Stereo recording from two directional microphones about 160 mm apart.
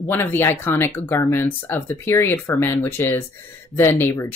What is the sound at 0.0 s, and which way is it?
Speech, 15° left (ahead or behind).